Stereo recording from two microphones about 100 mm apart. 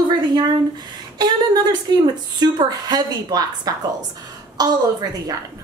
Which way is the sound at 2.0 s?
45° right (ahead or behind).